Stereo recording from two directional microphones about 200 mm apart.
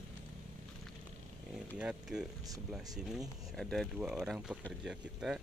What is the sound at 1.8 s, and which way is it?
Speech, 5° right (ahead or behind).